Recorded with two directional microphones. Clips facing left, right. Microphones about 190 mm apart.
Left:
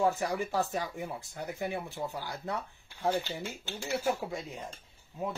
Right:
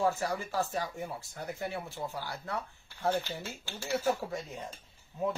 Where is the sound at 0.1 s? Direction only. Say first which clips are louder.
Left 2 dB; 15° left (ahead or behind).